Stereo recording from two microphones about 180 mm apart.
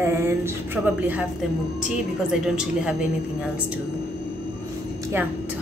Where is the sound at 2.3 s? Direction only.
5° right (ahead or behind).